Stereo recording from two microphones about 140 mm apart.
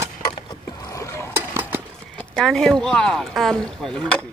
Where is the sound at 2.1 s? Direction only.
5° left (ahead or behind).